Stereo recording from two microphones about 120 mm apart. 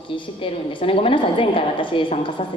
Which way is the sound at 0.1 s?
45° left (ahead or behind).